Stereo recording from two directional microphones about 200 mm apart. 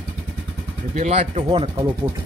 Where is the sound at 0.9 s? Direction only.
35° right (ahead or behind).